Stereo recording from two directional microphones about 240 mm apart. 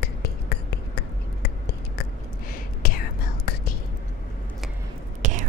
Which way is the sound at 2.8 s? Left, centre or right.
Left.